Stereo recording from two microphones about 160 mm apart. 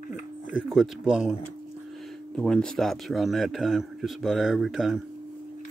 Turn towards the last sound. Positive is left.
turn(degrees=0)  # may be behind; listen again after turning